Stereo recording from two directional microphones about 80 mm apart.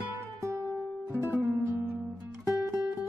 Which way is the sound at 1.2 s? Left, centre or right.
Right.